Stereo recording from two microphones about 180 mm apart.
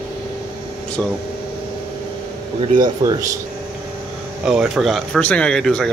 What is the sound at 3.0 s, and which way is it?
Speech, 20° right (ahead or behind).